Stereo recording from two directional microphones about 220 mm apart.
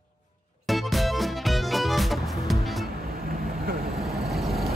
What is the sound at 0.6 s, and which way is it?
Music, centre (ahead or behind).